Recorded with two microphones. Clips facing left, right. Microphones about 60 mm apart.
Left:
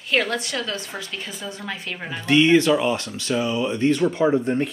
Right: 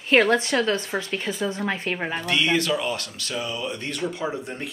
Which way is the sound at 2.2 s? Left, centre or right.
Centre.